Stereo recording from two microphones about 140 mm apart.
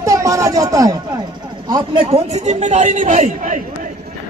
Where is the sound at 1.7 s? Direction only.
35° right (ahead or behind).